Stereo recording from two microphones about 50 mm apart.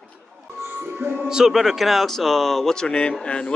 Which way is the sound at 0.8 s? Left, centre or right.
Right.